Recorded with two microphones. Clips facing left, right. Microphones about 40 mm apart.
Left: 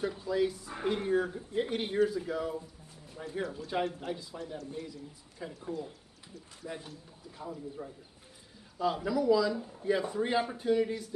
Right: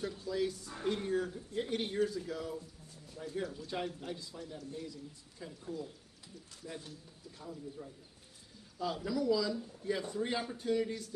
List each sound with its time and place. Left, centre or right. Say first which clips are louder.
0.0 s speech: left 5 dB; centre
0.7 s speech: left 4 dB; left
5.4 s a man's voice: left 4 dB; left
7.4 s a man's voice: left 5 dB; left
8.7 s speech: left 5 dB; centre